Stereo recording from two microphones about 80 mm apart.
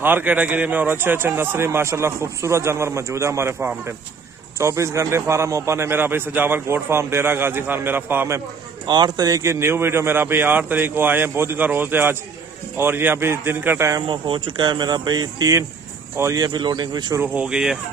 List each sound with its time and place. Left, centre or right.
0.0 s a man's voice: right
4.6 s a man's voice: right
8.8 s a man's voice: right
14.0 s speech: right
16.3 s speech: right
17.2 s speech: centre